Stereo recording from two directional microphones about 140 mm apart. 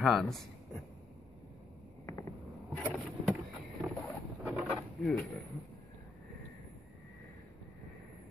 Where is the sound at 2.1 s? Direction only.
20° left (ahead or behind).